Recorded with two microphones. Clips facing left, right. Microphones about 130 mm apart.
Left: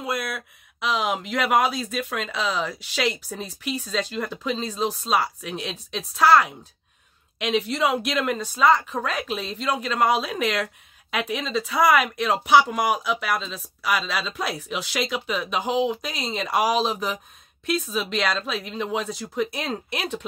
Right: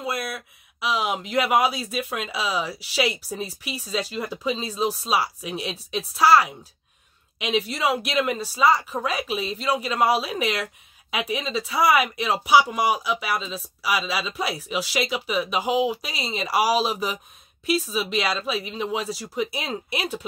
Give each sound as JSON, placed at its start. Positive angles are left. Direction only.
{"t": 0.0, "sound": "a woman's voice", "side_deg": 0}